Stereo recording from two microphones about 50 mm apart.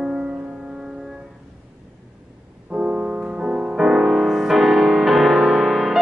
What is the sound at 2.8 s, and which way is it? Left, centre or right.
Music, centre.